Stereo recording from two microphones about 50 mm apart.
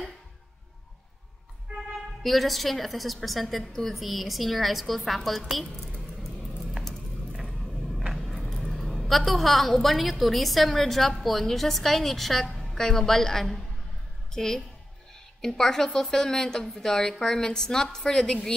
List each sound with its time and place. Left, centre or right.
2.2 s a woman's voice: centre
8.5 s a woman's voice: centre